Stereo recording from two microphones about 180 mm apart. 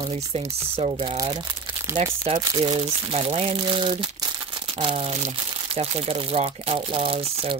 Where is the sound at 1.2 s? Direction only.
20° right (ahead or behind).